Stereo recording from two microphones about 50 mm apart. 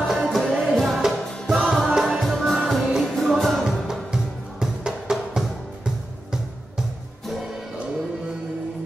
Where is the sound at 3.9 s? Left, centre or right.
Centre.